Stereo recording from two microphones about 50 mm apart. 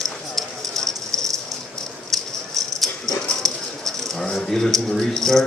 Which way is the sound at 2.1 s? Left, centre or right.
Centre.